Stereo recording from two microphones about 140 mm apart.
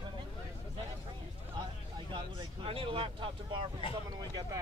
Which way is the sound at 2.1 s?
40° right (ahead or behind).